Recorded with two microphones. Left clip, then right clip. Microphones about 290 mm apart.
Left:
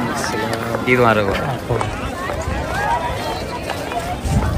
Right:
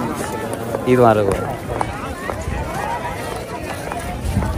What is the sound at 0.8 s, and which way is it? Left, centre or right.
Speech, centre.